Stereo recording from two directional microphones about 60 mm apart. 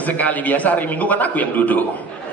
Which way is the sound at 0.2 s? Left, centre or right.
Left.